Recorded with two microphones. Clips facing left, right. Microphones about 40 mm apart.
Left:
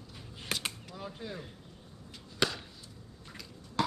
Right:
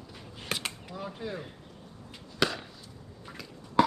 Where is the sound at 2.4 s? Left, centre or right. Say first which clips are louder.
Right 3 dB; centre.